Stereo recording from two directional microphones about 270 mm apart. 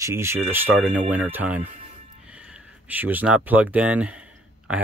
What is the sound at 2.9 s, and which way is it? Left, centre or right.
Speech, centre.